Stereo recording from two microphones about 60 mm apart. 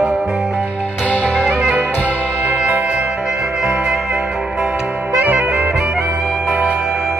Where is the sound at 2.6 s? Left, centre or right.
Right.